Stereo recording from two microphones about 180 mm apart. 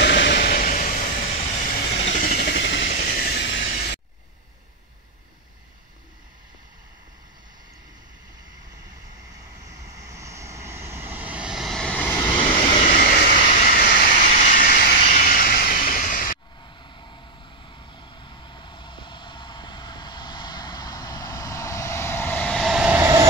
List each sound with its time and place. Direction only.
0.0 s vehicle: 70° left (ahead or behind)
2.0 s vehicle: 50° left (ahead or behind); by 2.9 s 75° left (ahead or behind)
2.9 s vehicle: 50° left (ahead or behind); by 3.6 s 70° left (ahead or behind)
3.6 s vehicle: 60° left (ahead or behind)
9.9 s vehicle: 15° right (ahead or behind); by 12.3 s 10° left (ahead or behind)
12.7 s vehicle: 45° left (ahead or behind)
16.6 s vehicle: 25° left (ahead or behind); by 22.9 s centre (ahead or behind)
22.9 s vehicle: 15° right (ahead or behind)